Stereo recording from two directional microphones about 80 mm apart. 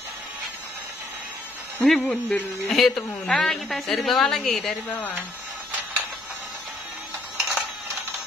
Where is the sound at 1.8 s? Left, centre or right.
Centre.